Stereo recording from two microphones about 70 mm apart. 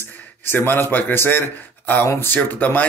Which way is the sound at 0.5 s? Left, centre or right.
Left.